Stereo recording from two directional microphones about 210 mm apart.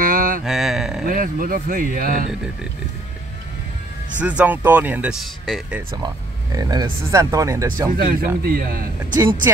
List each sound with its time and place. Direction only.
0.0 s mantra: 40° right (ahead or behind)
0.5 s a sound: centre (ahead or behind)
1.0 s speech: 40° right (ahead or behind)
4.2 s speech: 5° right (ahead or behind)
6.0 s speech: 20° right (ahead or behind)
8.0 s speech: 45° right (ahead or behind)
9.1 s speech: 20° right (ahead or behind)